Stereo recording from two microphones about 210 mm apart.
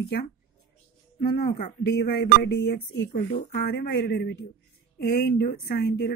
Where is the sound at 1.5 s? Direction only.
50° left (ahead or behind).